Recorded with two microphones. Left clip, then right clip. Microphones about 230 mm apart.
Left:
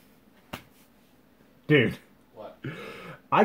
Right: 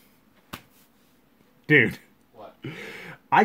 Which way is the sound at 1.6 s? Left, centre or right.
Right.